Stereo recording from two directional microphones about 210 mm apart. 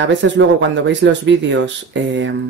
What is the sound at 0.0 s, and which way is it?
Speech, 60° right (ahead or behind).